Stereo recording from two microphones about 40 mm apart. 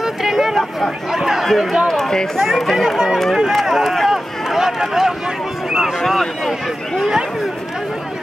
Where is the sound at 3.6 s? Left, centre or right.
Centre.